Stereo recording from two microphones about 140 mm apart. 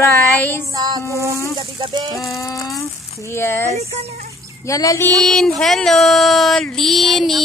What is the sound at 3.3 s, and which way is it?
Speech, 20° left (ahead or behind).